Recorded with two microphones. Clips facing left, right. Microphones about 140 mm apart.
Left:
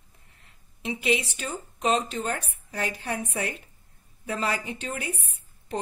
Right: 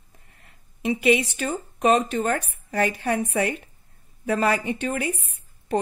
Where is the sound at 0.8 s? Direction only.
65° right (ahead or behind).